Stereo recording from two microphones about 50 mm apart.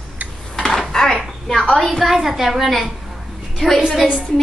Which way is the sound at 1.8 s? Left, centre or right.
Centre.